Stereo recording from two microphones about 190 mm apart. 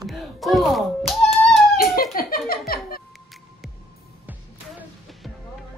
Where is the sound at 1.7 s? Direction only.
50° left (ahead or behind).